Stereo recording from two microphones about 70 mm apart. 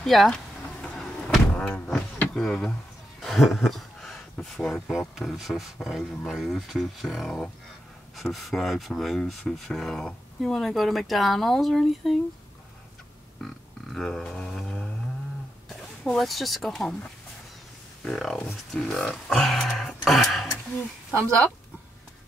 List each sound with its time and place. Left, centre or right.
0.0 s speech: centre
0.9 s vehicle: centre
1.5 s thunk: centre
2.3 s speech: centre
3.2 s a sound: centre
4.9 s speech: centre
13.4 s a sound: centre
16.1 s speech: centre
18.0 s speech: centre